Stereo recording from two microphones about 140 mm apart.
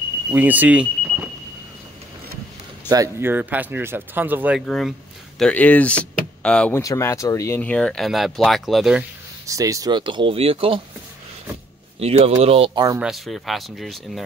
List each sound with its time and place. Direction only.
0.3 s speech: 10° right (ahead or behind)
2.9 s speech: 20° right (ahead or behind)
4.6 s speech: centre (ahead or behind)
6.7 s speech: 20° left (ahead or behind); by 9.0 s centre (ahead or behind)
9.5 s speech: 25° right (ahead or behind); by 10.8 s 40° right (ahead or behind)
12.0 s speech: 45° right (ahead or behind)
12.7 s speech: 25° right (ahead or behind)
13.0 s speech: centre (ahead or behind)